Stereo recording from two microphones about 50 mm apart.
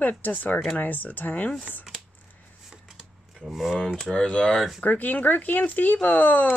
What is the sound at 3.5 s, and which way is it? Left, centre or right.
Speech, centre.